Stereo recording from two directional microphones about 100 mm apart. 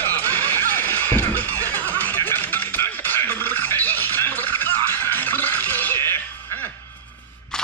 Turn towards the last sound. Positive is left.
turn(degrees=25)  # may be behind; listen again after turning